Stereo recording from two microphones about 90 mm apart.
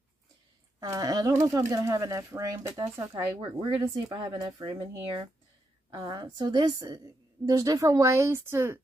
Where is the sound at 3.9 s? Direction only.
65° right (ahead or behind).